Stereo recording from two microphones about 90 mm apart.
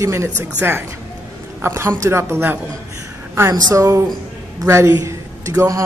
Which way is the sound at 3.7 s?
35° right (ahead or behind).